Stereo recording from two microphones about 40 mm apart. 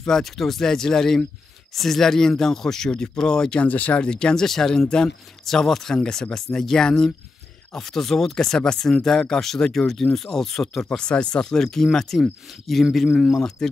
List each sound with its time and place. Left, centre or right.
0.0 s speech: centre
3.5 s speech: left
4.1 s speech: centre
11.0 s speech: left; by 12.8 s centre
13.3 s speech: centre